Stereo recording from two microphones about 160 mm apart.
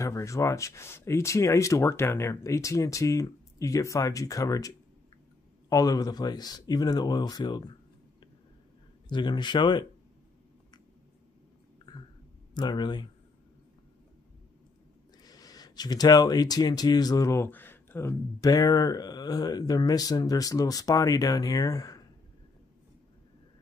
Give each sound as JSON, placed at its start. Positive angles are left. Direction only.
{"t": 0.0, "sound": "speech", "side_deg": 20}
{"t": 9.1, "sound": "speech", "side_deg": 30}
{"t": 12.5, "sound": "speech", "side_deg": 25}
{"t": 15.2, "sound": "speech", "side_deg": 25}